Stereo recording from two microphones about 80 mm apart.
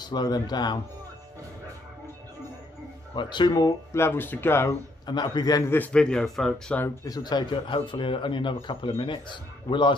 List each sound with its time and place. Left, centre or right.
0.0 s speech: left
3.2 s speech: left
3.9 s speech: left
5.0 s speech: left
5.8 s speech: centre
7.1 s speech: left